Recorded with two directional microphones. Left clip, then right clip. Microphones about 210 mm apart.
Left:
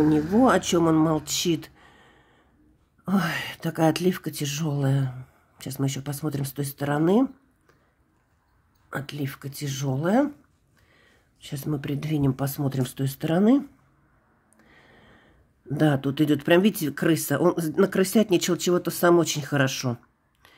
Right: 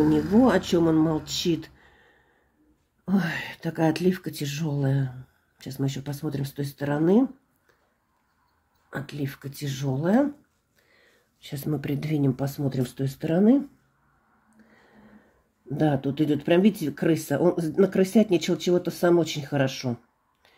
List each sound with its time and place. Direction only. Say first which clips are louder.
0.1 s speech: left 1 dB; 20° left (ahead or behind)
8.9 s speech: left 1 dB; 20° left (ahead or behind)
10.9 s speech: left 1 dB; 10° left (ahead or behind); by 13.6 s 25° left (ahead or behind)
15.7 s speech: left 1 dB; 25° left (ahead or behind)